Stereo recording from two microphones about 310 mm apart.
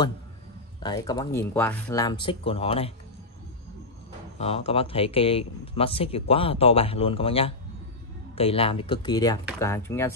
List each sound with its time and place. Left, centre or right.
0.7 s a man's voice: centre
4.4 s a man's voice: centre